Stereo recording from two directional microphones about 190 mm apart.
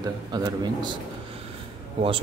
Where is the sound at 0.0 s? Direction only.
20° right (ahead or behind).